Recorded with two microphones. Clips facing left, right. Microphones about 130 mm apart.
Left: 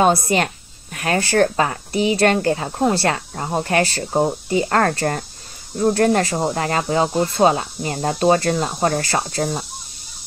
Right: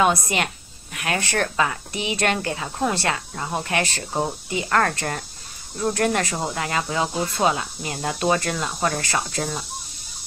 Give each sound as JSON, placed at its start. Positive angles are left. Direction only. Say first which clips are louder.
{"t": 0.0, "sound": "speech", "louder": "left 4 dB", "side_deg": 35}